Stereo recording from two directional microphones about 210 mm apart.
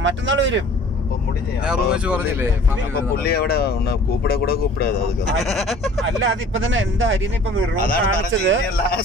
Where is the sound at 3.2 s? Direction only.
50° left (ahead or behind).